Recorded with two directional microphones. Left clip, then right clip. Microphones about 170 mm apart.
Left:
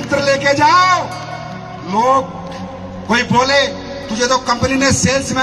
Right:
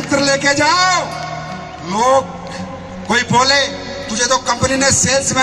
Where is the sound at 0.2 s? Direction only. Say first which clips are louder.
Left 1 dB; 35° left (ahead or behind).